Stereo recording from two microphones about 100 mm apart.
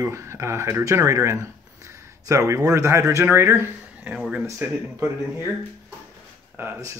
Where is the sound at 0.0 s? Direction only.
25° right (ahead or behind).